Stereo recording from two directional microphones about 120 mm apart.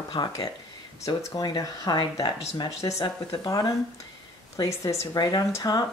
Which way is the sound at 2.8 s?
25° left (ahead or behind).